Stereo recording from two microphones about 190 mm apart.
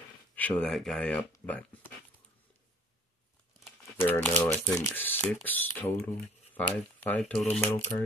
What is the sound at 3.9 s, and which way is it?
Speech, 10° left (ahead or behind).